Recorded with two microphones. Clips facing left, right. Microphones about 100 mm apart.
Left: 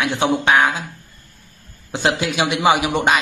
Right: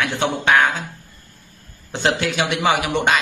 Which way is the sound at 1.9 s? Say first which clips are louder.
Left 1 dB; 15° left (ahead or behind).